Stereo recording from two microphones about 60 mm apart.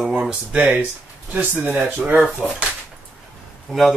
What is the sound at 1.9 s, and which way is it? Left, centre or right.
Speech, right.